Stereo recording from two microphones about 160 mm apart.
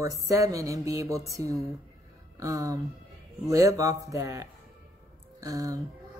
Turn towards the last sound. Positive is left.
turn(degrees=-20)  # may be behind; listen again after turning